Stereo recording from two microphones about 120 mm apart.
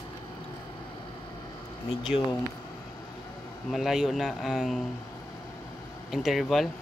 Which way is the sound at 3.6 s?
Centre (ahead or behind).